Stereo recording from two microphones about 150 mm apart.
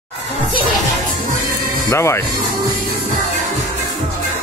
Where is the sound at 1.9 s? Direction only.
20° left (ahead or behind).